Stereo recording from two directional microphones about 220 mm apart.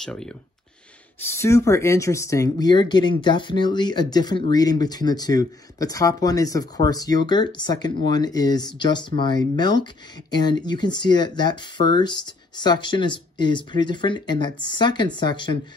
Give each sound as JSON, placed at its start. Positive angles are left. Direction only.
{"t": 0.0, "sound": "speech", "side_deg": 5}